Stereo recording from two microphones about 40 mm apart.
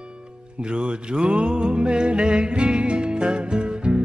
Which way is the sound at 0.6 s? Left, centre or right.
Right.